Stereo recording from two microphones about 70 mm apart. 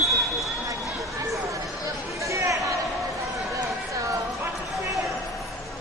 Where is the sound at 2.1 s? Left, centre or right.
Right.